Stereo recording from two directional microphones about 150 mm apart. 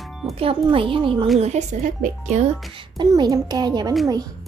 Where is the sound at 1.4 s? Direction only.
50° right (ahead or behind).